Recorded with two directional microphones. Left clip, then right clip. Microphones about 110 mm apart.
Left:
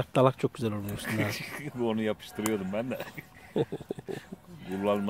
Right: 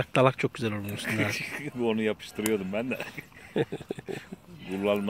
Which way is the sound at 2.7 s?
65° left (ahead or behind).